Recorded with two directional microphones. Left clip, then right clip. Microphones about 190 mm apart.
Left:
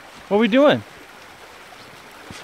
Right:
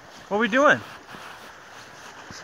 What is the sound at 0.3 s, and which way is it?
Speech, 50° left (ahead or behind).